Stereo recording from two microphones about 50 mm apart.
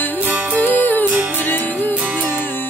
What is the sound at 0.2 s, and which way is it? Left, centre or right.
Music, right.